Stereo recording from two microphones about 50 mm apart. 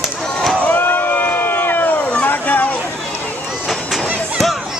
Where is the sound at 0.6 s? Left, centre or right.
Left.